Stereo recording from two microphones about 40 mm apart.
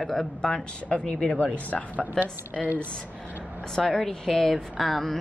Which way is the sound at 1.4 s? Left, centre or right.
Left.